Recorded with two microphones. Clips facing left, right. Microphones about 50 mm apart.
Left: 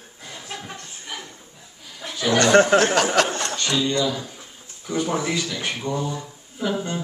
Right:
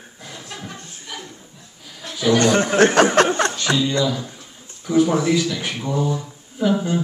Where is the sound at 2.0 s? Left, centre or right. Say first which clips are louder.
Even; centre.